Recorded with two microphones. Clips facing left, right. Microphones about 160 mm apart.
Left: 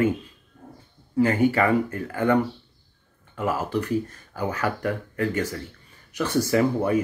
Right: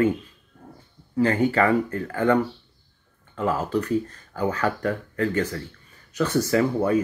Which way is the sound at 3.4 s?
10° left (ahead or behind).